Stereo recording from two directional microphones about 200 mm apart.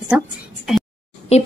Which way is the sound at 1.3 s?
30° left (ahead or behind).